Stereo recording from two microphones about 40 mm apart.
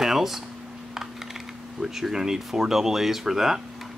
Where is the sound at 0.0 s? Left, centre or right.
Centre.